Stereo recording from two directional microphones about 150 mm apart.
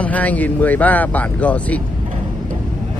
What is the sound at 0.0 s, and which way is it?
Speech, 10° left (ahead or behind).